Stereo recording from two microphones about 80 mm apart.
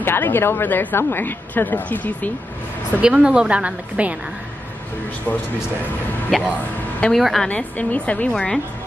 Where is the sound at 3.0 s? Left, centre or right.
Centre.